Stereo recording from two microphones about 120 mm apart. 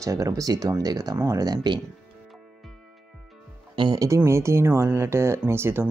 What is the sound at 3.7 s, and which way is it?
Speech, 35° right (ahead or behind).